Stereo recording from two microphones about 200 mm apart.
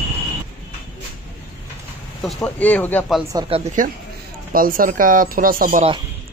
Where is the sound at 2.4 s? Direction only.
5° left (ahead or behind).